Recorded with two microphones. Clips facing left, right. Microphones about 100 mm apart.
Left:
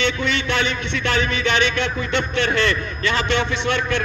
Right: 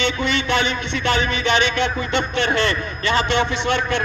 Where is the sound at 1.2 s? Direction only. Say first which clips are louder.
Right 1 dB; 5° right (ahead or behind).